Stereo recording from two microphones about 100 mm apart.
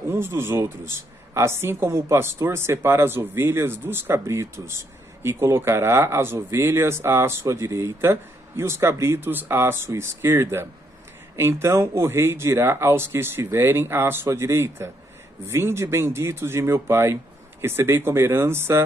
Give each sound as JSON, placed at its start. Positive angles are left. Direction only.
{"t": 0.1, "sound": "speech", "side_deg": -25}